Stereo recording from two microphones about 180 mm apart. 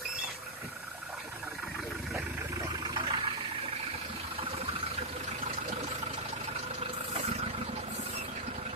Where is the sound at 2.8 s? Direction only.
25° right (ahead or behind).